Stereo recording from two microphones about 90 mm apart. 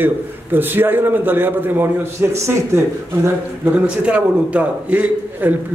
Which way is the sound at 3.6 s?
15° right (ahead or behind).